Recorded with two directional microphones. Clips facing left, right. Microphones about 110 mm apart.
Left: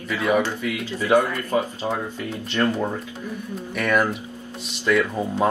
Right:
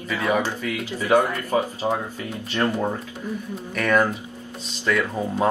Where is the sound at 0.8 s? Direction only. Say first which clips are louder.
Even; 15° right (ahead or behind).